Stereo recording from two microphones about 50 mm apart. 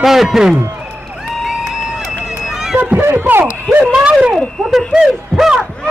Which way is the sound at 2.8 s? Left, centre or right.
Right.